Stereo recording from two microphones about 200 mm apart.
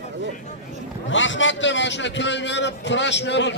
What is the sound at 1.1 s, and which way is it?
A man's voice, 70° left (ahead or behind).